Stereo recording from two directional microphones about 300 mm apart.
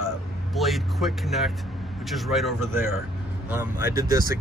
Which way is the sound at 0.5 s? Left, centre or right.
Centre.